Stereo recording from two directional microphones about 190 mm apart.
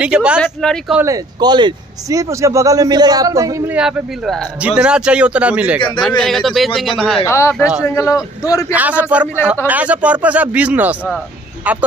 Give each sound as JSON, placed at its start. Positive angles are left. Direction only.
{"t": 0.0, "sound": "speech", "side_deg": -5}
{"t": 0.9, "sound": "a man's voice", "side_deg": -15}
{"t": 3.7, "sound": "speech", "side_deg": -5}
{"t": 7.2, "sound": "a man's voice", "side_deg": 15}
{"t": 8.7, "sound": "a man's voice", "side_deg": -10}